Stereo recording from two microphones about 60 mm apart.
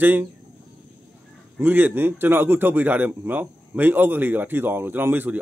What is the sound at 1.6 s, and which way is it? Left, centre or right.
A man's voice, right.